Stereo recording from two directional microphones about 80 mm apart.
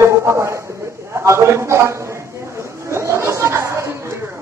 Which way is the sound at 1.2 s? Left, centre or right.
Right.